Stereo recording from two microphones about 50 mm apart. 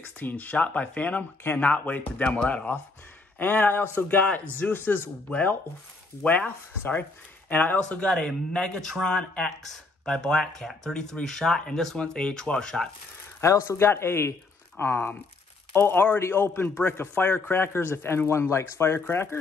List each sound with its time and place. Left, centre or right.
0.2 s speech: left
3.3 s a man's voice: left
8.1 s speech: centre
13.4 s a man's voice: left
16.2 s a man's voice: left